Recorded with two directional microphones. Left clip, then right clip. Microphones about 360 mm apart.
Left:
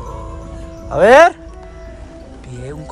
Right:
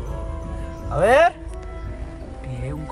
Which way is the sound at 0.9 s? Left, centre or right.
Left.